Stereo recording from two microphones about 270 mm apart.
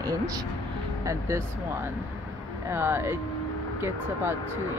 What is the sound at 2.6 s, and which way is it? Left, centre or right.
Speech, centre.